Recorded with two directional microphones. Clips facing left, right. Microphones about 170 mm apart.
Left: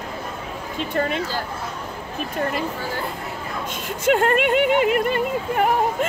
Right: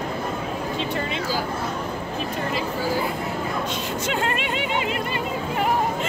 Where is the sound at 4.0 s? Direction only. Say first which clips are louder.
Left 10 dB; 50° left (ahead or behind).